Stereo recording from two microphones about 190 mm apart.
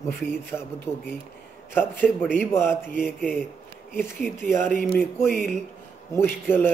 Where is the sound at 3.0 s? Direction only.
Centre (ahead or behind).